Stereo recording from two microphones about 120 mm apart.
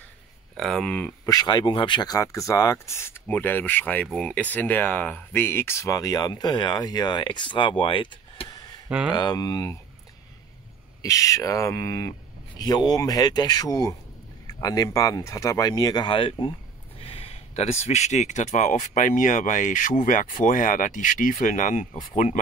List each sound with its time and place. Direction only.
0.6 s speech: 5° left (ahead or behind)
1.2 s speech: 30° left (ahead or behind)
8.8 s speech: 10° right (ahead or behind)
9.1 s speech: 35° left (ahead or behind)
11.0 s speech: 30° left (ahead or behind); by 22.4 s 90° left